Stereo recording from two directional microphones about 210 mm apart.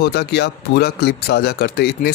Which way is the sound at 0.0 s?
50° left (ahead or behind).